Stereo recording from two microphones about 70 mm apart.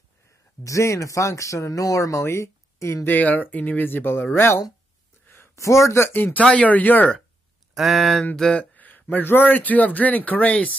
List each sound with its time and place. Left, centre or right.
0.7 s speech: left
3.1 s a man's voice: left
5.2 s a sound: left
5.6 s speech: left
6.1 s a man's voice: left
7.7 s speech: centre
8.5 s a sound: left
9.1 s a man's voice: left